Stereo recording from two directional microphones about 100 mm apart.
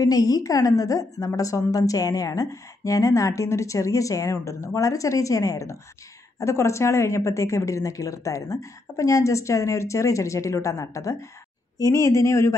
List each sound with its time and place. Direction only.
0.0 s a woman's voice: 40° left (ahead or behind)